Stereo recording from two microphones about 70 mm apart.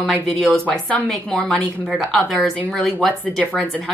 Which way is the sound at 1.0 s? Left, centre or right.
Centre.